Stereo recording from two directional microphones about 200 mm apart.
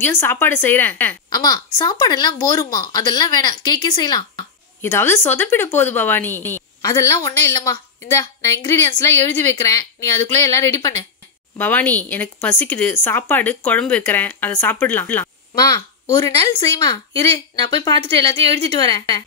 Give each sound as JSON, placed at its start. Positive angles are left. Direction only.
{"t": 0.2, "sound": "speech", "side_deg": 10}
{"t": 1.3, "sound": "speech", "side_deg": 20}